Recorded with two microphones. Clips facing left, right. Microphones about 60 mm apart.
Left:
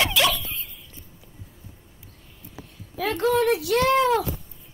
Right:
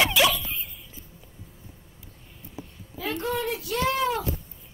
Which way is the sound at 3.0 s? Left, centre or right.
Left.